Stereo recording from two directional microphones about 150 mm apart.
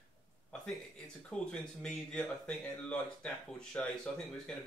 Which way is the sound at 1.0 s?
5° left (ahead or behind).